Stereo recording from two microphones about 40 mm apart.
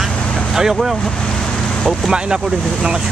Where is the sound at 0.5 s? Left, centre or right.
Centre.